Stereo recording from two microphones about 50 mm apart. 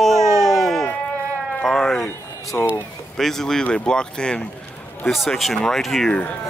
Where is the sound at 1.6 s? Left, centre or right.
Centre.